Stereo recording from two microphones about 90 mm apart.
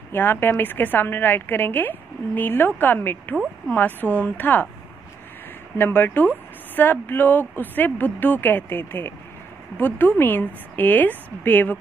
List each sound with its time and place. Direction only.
0.1 s speech: 25° left (ahead or behind)
5.8 s speech: 25° left (ahead or behind)